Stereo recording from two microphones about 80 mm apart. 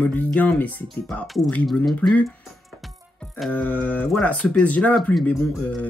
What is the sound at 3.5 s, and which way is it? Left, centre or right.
Speech, centre.